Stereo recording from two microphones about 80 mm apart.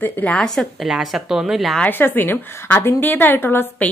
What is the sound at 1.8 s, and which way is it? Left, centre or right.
A woman's voice, left.